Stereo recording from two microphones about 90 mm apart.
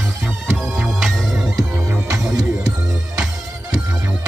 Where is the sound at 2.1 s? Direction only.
40° right (ahead or behind).